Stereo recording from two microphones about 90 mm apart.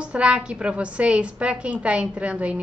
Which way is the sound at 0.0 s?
10° right (ahead or behind).